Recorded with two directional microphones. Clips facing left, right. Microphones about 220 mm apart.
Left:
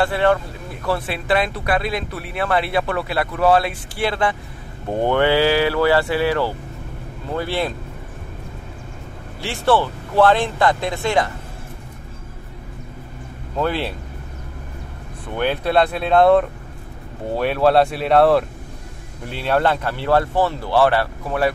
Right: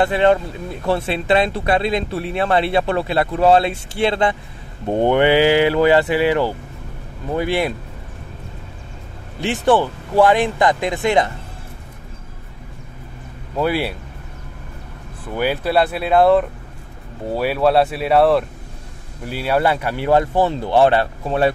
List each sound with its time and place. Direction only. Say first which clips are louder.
0.0 s speech: right 3 dB; 20° right (ahead or behind)
9.4 s speech: right 2 dB; 15° right (ahead or behind)
13.6 s speech: right 2 dB; 10° right (ahead or behind)
15.3 s speech: even; 5° right (ahead or behind); by 21.5 s 25° right (ahead or behind)